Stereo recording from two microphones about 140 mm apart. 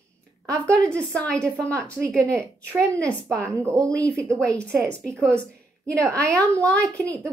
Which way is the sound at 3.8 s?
10° left (ahead or behind).